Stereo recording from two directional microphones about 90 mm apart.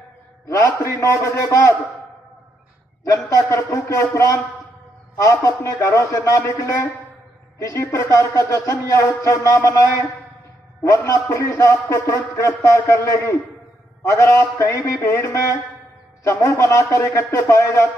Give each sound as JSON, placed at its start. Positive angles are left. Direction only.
{"t": 0.5, "sound": "music", "side_deg": 35}
{"t": 3.3, "sound": "music", "side_deg": 30}
{"t": 7.5, "sound": "music", "side_deg": 35}